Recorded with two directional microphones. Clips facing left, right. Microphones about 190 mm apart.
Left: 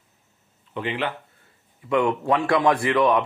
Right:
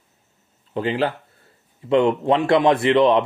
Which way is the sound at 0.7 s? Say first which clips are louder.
Right 6 dB; 35° right (ahead or behind).